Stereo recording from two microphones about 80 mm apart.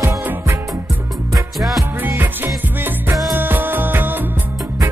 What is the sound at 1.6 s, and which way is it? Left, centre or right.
Music, centre.